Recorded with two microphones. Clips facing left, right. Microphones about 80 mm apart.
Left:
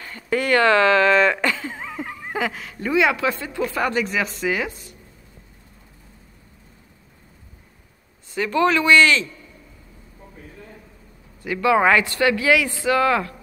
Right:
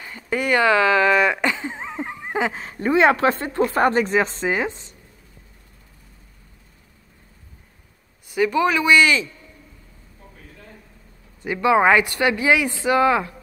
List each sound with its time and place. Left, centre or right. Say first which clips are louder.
0.0 s speech: left 1 dB; centre
8.3 s speech: even; centre
11.4 s speech: right 1 dB; right